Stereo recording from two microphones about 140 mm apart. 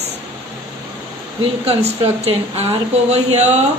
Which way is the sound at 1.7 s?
45° right (ahead or behind).